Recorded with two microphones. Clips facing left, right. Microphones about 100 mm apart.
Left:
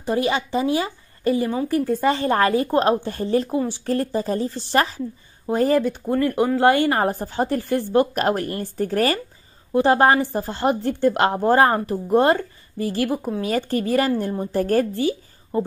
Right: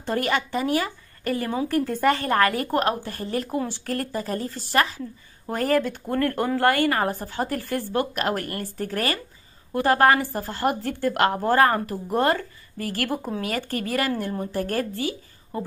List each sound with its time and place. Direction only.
0.0 s a woman's voice: 15° left (ahead or behind); by 9.2 s 35° left (ahead or behind)
9.8 s speech: 20° left (ahead or behind)
12.7 s speech: 20° left (ahead or behind)
13.4 s a woman's voice: 30° left (ahead or behind)